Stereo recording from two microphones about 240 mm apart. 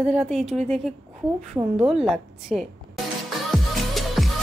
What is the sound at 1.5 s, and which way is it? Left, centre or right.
Speech, centre.